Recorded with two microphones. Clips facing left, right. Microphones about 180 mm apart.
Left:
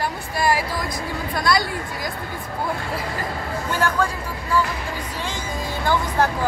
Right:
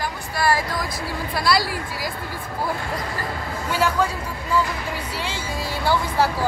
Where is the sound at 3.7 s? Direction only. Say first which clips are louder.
Right 1 dB; 15° right (ahead or behind).